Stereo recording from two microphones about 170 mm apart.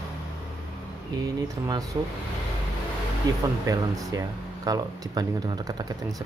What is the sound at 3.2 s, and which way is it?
Speech, 20° right (ahead or behind).